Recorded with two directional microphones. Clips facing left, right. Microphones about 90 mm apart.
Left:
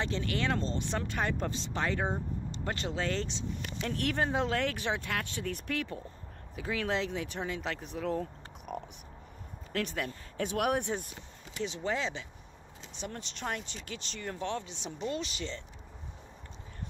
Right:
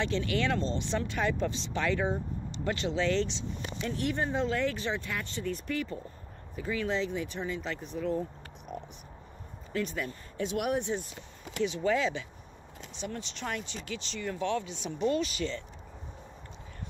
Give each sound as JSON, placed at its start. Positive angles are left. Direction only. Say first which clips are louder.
{"t": 0.0, "sound": "speech", "louder": "right 3 dB", "side_deg": 40}
{"t": 3.8, "sound": "speech", "louder": "even", "side_deg": 60}
{"t": 9.7, "sound": "speech", "louder": "right 1 dB", "side_deg": 65}
{"t": 11.6, "sound": "speech", "louder": "right 5 dB", "side_deg": 30}
{"t": 12.9, "sound": "speech", "louder": "right 3 dB", "side_deg": 40}